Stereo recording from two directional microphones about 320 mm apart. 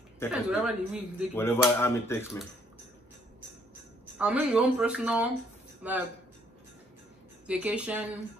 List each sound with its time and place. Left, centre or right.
0.3 s speech: centre
1.3 s speech: centre
4.2 s speech: centre
7.4 s speech: centre